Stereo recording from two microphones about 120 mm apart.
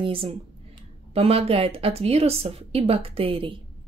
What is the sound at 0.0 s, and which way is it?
A woman's voice, 50° right (ahead or behind).